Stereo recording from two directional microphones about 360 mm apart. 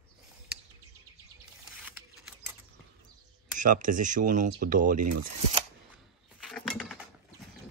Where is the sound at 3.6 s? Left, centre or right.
Right.